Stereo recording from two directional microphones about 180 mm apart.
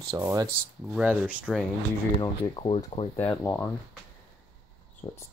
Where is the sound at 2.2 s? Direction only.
25° left (ahead or behind).